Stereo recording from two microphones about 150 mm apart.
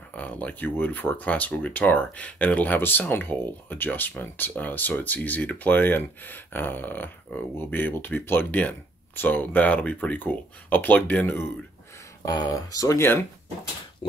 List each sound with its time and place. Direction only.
0.1 s speech: 10° left (ahead or behind)
12.3 s speech: 25° left (ahead or behind)